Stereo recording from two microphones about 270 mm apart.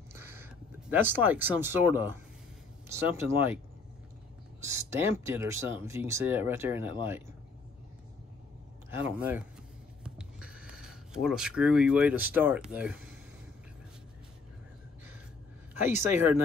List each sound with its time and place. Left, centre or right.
0.1 s a sound: centre
2.9 s speech: centre
4.9 s speech: centre
9.0 s speech: centre
10.0 s a sound: centre
11.2 s speech: centre
15.9 s speech: centre